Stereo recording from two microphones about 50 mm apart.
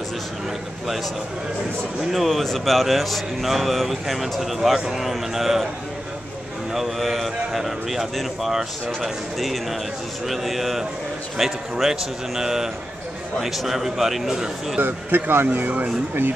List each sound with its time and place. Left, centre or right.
2.0 s speech: centre
6.7 s a man's voice: centre
14.8 s speech: right